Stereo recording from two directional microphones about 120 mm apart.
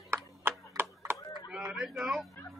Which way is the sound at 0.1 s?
20° right (ahead or behind).